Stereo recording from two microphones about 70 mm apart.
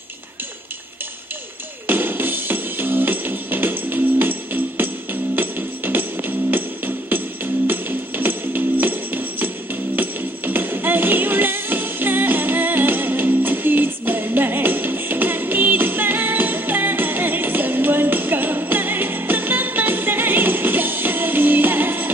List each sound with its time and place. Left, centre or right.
1.9 s music: right
7.6 s music: right